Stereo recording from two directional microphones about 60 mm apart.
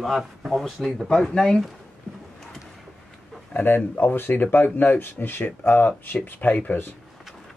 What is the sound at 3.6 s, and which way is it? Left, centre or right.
Speech, left.